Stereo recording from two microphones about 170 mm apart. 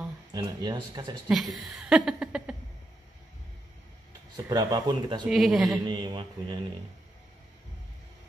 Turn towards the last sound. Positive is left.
turn(degrees=-30)  # may be behind; listen again after turning